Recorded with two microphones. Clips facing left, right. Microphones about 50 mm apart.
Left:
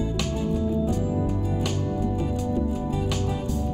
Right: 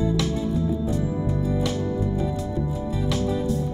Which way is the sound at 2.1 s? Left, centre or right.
Left.